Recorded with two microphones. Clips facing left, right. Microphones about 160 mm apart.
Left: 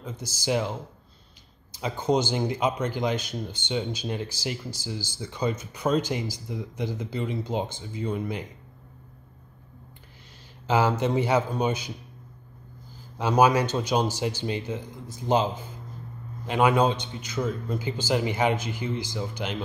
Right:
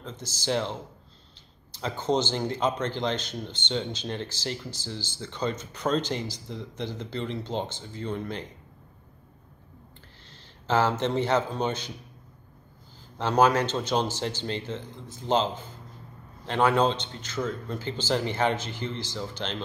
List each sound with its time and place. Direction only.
0.0 s speech: 10° left (ahead or behind)
10.7 s speech: 10° left (ahead or behind)
13.2 s speech: 10° left (ahead or behind)